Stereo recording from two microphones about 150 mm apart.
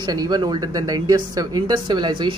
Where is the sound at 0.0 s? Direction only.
25° right (ahead or behind).